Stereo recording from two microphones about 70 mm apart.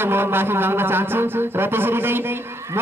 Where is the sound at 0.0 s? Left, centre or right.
Right.